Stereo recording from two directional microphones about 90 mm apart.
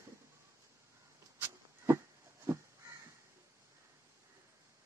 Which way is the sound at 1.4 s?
25° right (ahead or behind).